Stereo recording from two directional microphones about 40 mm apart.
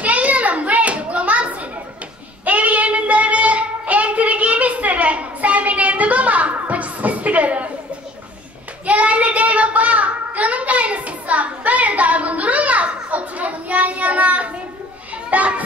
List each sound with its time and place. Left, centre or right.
0.0 s children playing: right
2.4 s child singing: right
8.8 s child singing: right
15.2 s children playing: right